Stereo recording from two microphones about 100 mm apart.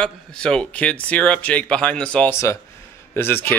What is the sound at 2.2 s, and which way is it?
Speech, 30° left (ahead or behind).